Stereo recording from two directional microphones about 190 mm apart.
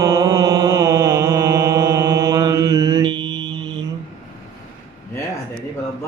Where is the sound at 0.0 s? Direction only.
20° right (ahead or behind).